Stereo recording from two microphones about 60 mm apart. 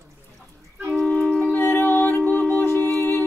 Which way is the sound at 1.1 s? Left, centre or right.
Left.